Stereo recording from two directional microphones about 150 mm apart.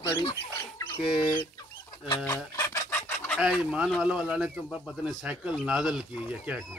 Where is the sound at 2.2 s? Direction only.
20° left (ahead or behind).